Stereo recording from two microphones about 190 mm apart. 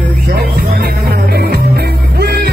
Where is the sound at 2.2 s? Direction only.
55° right (ahead or behind).